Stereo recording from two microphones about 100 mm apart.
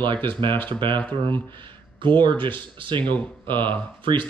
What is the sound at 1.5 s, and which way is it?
Speech, 50° right (ahead or behind).